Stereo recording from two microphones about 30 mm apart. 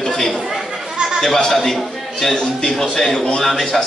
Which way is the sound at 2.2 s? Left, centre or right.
Left.